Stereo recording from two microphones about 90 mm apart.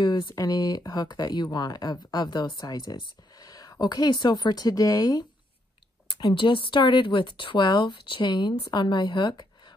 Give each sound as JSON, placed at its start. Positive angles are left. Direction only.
{"t": 0.0, "sound": "speech", "side_deg": 55}
{"t": 0.4, "sound": "speech", "side_deg": 45}
{"t": 2.6, "sound": "speech", "side_deg": 45}
{"t": 6.0, "sound": "speech", "side_deg": 60}